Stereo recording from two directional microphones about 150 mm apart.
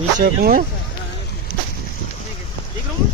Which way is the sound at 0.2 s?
90° right.